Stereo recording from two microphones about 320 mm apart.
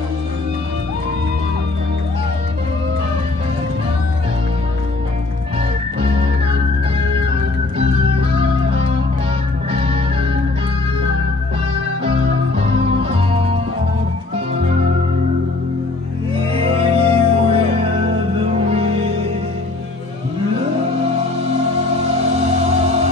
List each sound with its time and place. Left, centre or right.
8.2 s music: centre
16.5 s music: centre